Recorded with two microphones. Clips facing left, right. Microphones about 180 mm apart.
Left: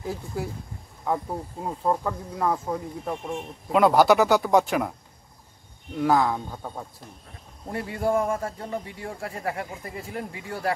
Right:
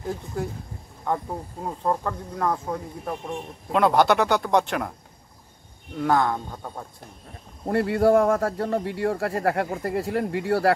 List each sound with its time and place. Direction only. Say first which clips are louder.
0.0 s speech: right 2 dB; 5° left (ahead or behind)
5.9 s speech: even; 5° left (ahead or behind)
7.6 s speech: right 7 dB; 65° right (ahead or behind)